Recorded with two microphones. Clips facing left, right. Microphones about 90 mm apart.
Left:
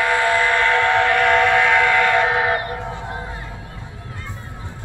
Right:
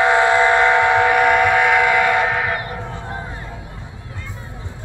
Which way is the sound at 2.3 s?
20° left (ahead or behind).